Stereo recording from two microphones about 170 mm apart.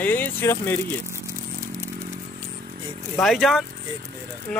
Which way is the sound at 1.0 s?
15° right (ahead or behind).